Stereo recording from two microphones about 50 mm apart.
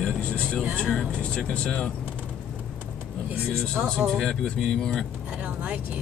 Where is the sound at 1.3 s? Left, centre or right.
Left.